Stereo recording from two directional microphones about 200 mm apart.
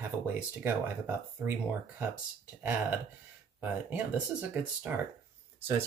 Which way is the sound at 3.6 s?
10° right (ahead or behind).